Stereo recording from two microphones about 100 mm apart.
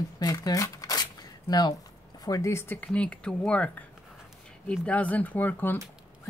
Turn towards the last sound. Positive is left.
turn(degrees=20)  # may be behind; listen again after turning